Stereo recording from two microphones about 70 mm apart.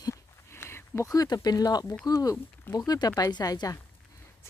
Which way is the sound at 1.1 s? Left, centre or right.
Left.